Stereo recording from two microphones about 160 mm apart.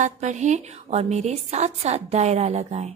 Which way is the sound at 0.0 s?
50° right (ahead or behind).